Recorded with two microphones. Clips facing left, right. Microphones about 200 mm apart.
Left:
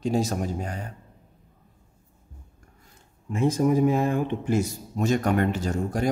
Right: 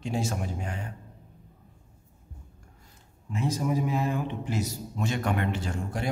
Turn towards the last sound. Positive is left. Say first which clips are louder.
# left 6 dB
turn(degrees=40)  # may be behind; listen again after turning